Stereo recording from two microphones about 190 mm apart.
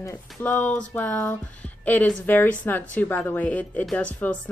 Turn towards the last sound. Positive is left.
turn(degrees=5)  # may be behind; listen again after turning